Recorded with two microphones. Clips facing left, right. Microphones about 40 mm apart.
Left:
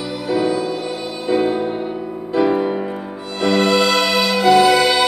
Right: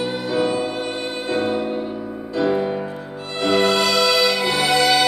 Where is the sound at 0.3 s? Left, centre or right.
Right.